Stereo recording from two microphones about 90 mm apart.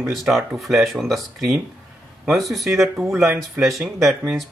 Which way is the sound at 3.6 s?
15° right (ahead or behind).